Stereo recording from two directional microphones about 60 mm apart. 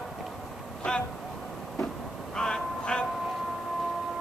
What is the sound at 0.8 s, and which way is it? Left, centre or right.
Speech, centre.